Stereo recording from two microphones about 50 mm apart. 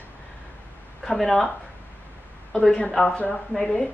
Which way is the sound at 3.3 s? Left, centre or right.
Centre.